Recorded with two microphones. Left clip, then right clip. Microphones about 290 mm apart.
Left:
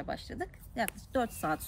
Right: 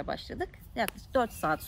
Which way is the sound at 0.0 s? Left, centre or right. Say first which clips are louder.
Right 3 dB; centre.